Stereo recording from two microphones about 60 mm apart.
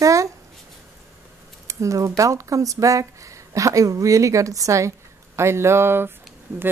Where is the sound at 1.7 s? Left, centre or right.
Right.